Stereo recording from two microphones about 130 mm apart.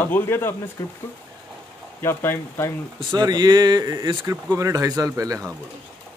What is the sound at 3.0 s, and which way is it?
Speech, 35° right (ahead or behind).